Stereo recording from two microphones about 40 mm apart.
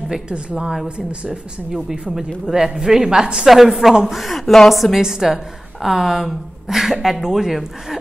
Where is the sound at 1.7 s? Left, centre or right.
Centre.